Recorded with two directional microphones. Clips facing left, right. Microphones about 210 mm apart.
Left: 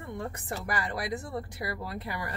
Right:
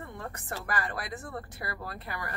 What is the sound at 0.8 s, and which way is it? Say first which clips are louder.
A woman's voice: left 3 dB; 20° left (ahead or behind).